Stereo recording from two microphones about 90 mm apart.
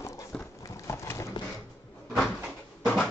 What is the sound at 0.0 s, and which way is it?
Horse, 35° left (ahead or behind).